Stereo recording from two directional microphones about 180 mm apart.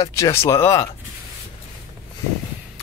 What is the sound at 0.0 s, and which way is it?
Speech, 15° left (ahead or behind).